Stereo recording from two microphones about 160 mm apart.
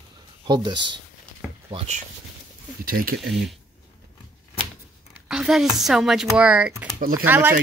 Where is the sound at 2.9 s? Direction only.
65° right (ahead or behind).